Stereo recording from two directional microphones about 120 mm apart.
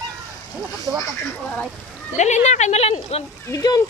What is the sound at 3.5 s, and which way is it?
Speech, 30° left (ahead or behind).